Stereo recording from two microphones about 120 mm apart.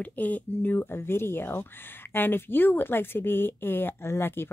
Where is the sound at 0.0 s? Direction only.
15° left (ahead or behind).